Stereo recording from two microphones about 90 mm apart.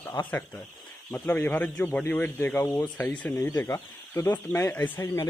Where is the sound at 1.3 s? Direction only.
20° left (ahead or behind).